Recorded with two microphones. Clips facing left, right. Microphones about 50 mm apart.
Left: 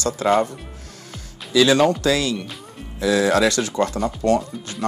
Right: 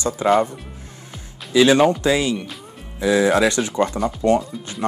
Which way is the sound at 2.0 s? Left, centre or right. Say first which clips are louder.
Right 1 dB; right.